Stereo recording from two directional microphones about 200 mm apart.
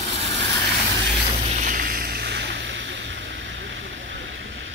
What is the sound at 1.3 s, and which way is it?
Vehicle, 35° right (ahead or behind).